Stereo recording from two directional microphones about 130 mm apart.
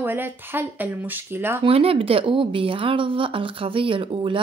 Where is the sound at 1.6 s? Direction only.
45° right (ahead or behind).